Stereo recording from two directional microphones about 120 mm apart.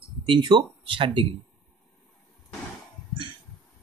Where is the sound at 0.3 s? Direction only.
40° right (ahead or behind).